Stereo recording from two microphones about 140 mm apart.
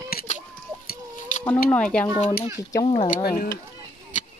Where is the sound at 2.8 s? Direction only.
45° left (ahead or behind).